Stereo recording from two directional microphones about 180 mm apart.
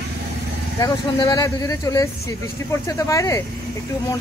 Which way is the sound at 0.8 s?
20° left (ahead or behind).